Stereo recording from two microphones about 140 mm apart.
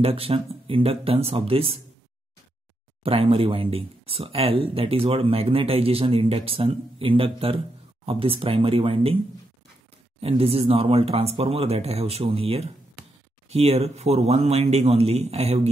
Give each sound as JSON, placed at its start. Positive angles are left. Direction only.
{"t": 0.0, "sound": "speech", "side_deg": -45}
{"t": 3.0, "sound": "speech", "side_deg": -40}
{"t": 10.2, "sound": "speech", "side_deg": -45}